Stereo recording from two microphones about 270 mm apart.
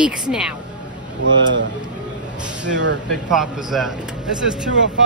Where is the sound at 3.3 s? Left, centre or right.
Centre.